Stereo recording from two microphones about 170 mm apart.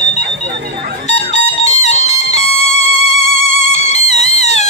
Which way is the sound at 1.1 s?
40° left (ahead or behind).